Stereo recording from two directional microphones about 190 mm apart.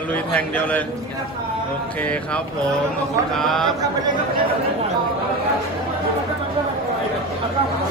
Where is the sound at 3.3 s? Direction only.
Centre (ahead or behind).